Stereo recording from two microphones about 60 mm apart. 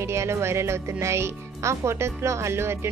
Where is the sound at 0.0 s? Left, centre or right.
Right.